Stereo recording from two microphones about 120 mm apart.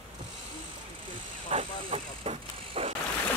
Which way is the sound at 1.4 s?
55° right (ahead or behind).